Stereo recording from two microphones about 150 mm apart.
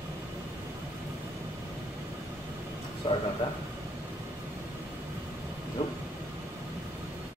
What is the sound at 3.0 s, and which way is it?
Speech, 35° left (ahead or behind).